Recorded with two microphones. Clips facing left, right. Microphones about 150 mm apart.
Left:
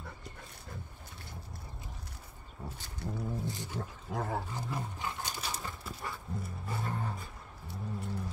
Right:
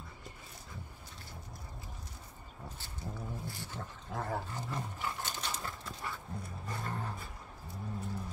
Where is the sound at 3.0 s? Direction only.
70° left (ahead or behind).